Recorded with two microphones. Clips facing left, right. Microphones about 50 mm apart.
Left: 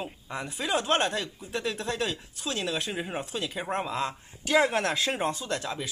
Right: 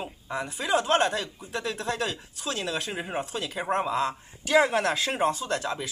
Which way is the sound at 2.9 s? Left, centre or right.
Centre.